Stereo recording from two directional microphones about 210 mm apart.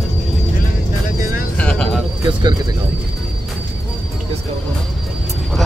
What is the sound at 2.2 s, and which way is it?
Bird, 20° right (ahead or behind).